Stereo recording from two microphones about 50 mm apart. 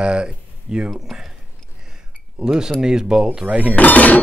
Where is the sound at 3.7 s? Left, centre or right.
Left.